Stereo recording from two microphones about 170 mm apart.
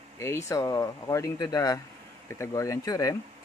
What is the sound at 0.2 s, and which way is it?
Speech, 15° left (ahead or behind).